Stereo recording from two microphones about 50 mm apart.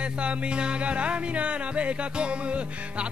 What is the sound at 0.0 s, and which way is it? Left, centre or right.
Music, right.